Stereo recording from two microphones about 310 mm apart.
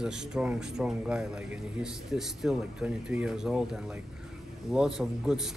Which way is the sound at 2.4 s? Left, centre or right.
Centre.